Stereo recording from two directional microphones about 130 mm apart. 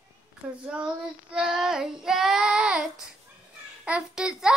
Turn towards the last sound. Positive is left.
turn(degrees=-5)  # may be behind; listen again after turning